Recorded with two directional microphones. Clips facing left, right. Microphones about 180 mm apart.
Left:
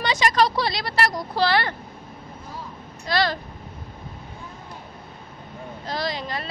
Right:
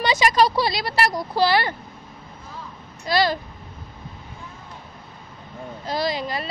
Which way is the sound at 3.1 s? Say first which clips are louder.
Right 3 dB; 10° right (ahead or behind).